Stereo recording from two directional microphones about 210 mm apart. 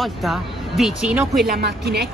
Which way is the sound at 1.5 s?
50° right (ahead or behind).